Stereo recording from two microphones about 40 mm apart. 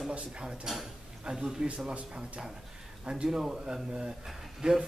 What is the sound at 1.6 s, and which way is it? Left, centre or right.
A man's voice, right.